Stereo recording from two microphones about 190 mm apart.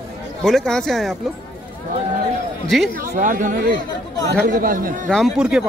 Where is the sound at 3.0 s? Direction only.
45° right (ahead or behind).